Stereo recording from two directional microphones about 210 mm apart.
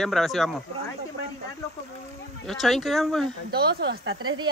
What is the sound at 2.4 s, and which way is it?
Speech, centre (ahead or behind).